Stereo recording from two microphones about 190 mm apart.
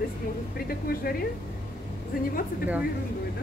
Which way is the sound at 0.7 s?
50° left (ahead or behind).